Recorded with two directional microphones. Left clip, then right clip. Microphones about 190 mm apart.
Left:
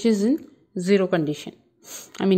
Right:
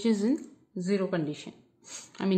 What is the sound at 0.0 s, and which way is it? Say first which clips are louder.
A woman's voice: left 7 dB; 35° left (ahead or behind).